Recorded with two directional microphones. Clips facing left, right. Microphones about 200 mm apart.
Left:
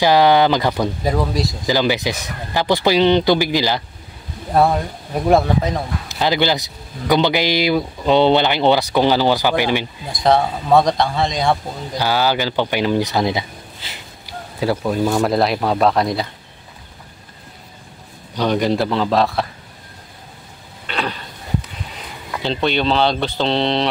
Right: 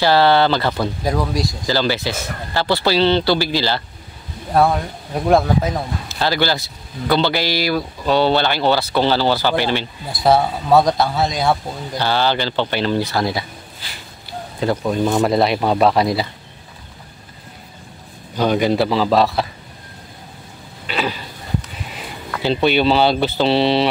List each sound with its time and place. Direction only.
0.0 s speech: 15° left (ahead or behind)
1.0 s speech: 5° left (ahead or behind)
1.7 s speech: 15° left (ahead or behind)
4.6 s speech: centre (ahead or behind)
6.0 s speech: 15° left (ahead or behind)
10.1 s speech: 5° right (ahead or behind)
12.0 s speech: 10° left (ahead or behind)
14.6 s speech: 5° left (ahead or behind)
18.3 s speech: 5° right (ahead or behind)
20.8 s a sound: 5° right (ahead or behind)
22.4 s speech: 5° right (ahead or behind)